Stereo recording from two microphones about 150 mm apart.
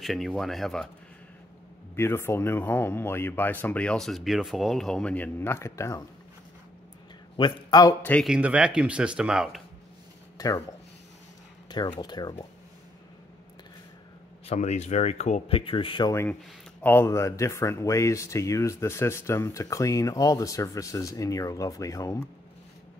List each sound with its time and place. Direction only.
0.0 s speech: centre (ahead or behind)
2.0 s speech: 15° left (ahead or behind)
7.3 s a man's voice: 30° left (ahead or behind)
8.0 s speech: 10° left (ahead or behind)
8.3 s speech: 5° right (ahead or behind)
10.3 s speech: 25° left (ahead or behind)
12.0 s speech: 30° left (ahead or behind)
14.4 s speech: 50° left (ahead or behind)
15.5 s speech: 35° left (ahead or behind)
16.8 s speech: 15° left (ahead or behind)